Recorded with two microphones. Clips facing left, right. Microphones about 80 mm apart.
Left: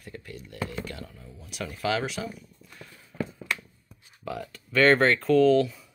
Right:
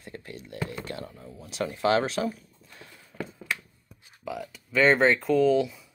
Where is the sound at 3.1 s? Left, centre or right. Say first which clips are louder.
Left 4 dB; left.